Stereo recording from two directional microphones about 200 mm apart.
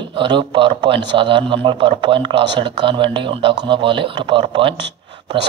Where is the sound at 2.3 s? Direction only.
60° right (ahead or behind).